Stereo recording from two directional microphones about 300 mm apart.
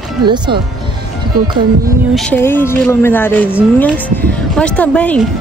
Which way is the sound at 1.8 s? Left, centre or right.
Centre.